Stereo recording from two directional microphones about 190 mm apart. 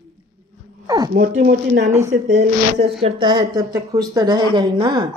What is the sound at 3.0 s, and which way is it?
A woman's voice, 30° right (ahead or behind).